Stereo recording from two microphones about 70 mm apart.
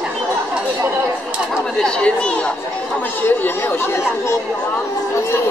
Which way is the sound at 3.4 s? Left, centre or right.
Left.